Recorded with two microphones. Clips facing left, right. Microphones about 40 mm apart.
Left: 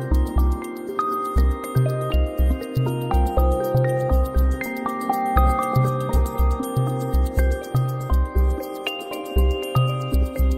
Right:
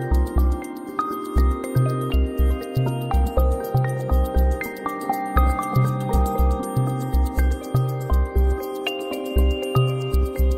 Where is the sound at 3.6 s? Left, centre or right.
Centre.